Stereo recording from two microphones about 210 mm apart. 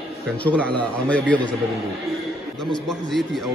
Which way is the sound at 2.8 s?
Centre (ahead or behind).